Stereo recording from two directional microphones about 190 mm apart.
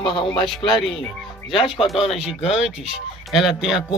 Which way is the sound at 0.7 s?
Centre (ahead or behind).